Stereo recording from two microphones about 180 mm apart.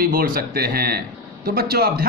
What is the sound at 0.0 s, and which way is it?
A man's voice, 55° right (ahead or behind).